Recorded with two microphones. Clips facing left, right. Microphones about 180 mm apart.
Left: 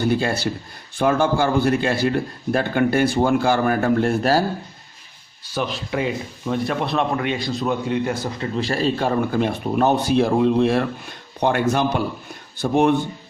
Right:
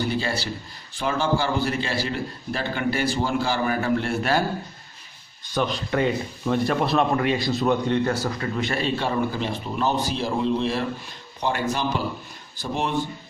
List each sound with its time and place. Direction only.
0.0 s a man's voice: 50° left (ahead or behind); by 4.5 s 35° left (ahead or behind)
5.4 s speech: 5° left (ahead or behind)
8.5 s a man's voice: 35° left (ahead or behind); by 12.9 s 55° left (ahead or behind)